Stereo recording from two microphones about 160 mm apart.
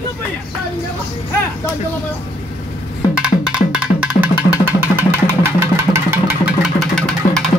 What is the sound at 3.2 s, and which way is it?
Music, 5° right (ahead or behind).